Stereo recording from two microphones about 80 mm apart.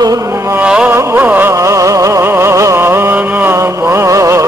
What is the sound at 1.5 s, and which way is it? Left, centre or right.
Music, right.